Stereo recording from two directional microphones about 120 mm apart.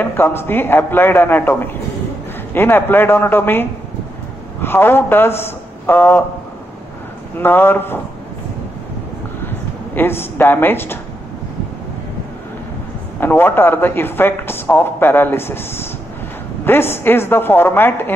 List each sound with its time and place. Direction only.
0.0 s a man's voice: 20° left (ahead or behind)
7.3 s a man's voice: 20° left (ahead or behind)
9.9 s a man's voice: 20° left (ahead or behind)
13.2 s a man's voice: 15° left (ahead or behind)